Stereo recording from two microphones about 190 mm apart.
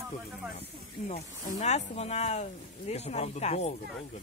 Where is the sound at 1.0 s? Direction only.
35° left (ahead or behind).